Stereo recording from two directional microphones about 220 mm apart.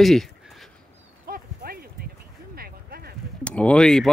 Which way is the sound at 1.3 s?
45° right (ahead or behind).